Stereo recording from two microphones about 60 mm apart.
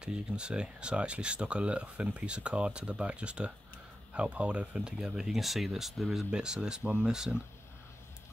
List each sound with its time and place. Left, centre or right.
0.0 s speech: centre